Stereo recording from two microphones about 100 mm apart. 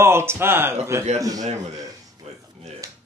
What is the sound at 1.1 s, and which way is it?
Speech, 35° right (ahead or behind).